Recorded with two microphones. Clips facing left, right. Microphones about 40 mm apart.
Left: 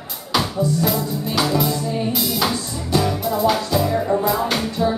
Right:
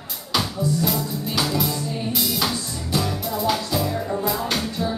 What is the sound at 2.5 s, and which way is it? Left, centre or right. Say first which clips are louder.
Music: left 4 dB; centre.